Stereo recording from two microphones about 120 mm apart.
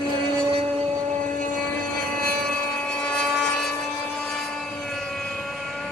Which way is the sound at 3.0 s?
5° left (ahead or behind).